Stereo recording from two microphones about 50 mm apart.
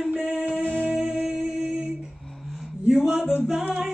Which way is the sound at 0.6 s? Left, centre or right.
Centre.